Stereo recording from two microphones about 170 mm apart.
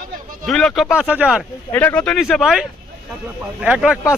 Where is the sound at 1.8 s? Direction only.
10° left (ahead or behind).